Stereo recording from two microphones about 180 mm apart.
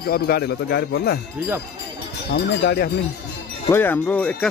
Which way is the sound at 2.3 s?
70° left (ahead or behind).